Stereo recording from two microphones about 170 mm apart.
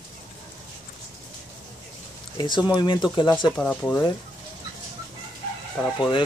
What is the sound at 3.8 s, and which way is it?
Speech, 25° left (ahead or behind).